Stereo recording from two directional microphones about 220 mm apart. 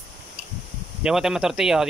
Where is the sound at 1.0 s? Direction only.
Centre (ahead or behind).